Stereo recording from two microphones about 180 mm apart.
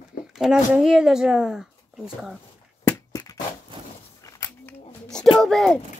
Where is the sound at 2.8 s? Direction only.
20° left (ahead or behind).